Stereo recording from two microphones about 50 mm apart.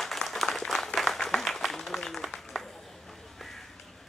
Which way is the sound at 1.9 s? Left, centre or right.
Centre.